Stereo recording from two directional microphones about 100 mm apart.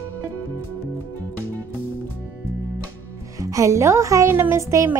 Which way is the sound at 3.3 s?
35° right (ahead or behind).